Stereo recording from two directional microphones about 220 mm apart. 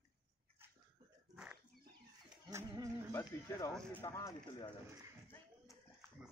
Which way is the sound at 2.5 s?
15° right (ahead or behind).